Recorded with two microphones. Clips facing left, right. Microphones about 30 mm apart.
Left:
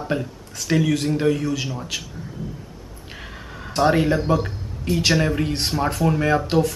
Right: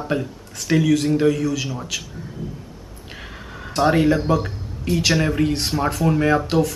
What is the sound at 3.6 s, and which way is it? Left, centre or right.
A man's voice, centre.